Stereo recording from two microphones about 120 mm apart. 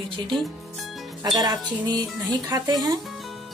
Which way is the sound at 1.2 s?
35° right (ahead or behind).